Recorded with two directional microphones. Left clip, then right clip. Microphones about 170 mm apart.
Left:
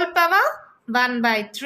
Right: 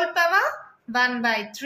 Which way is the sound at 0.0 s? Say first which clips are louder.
Left 3 dB; 50° left (ahead or behind).